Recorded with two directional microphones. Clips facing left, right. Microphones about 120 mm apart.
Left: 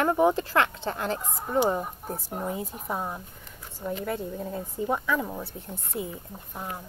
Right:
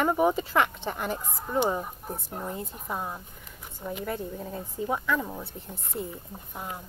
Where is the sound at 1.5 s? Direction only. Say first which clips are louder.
Left 2 dB; centre (ahead or behind).